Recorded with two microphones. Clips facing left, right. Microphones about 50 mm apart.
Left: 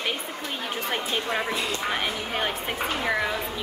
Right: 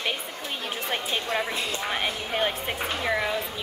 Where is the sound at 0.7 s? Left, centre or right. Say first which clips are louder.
Left 1 dB; centre.